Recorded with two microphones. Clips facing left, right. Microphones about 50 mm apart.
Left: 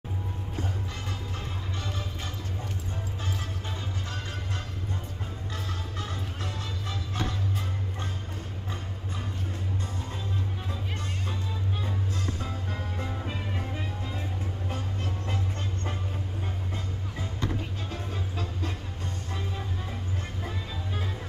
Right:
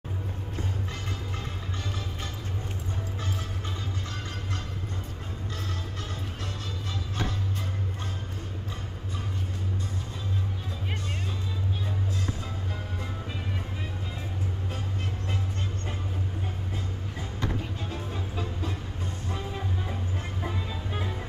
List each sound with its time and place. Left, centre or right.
17.8 s music: centre
20.4 s music: centre